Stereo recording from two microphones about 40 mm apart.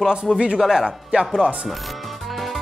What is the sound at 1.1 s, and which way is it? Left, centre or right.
Speech, right.